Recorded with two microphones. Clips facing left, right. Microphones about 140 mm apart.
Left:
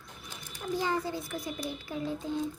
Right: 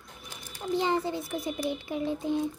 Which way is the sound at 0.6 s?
25° right (ahead or behind).